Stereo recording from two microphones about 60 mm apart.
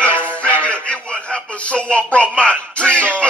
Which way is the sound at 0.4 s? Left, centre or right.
Centre.